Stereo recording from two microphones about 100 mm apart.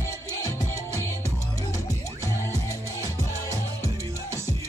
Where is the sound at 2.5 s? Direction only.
25° right (ahead or behind).